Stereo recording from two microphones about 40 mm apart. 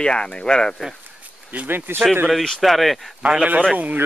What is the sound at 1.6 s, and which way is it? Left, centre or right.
Speech, right.